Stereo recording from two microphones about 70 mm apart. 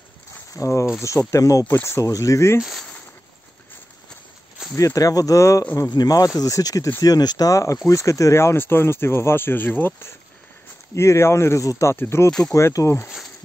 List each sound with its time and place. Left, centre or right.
0.5 s speech: left
4.7 s speech: left
5.9 s speech: left
7.0 s speech: left
11.9 s speech: left
12.3 s speech: centre
12.5 s speech: left